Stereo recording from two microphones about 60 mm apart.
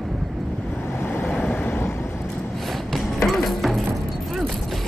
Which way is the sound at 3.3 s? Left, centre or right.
Centre.